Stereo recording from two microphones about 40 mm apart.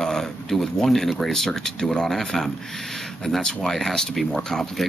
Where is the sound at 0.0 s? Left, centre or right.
Centre.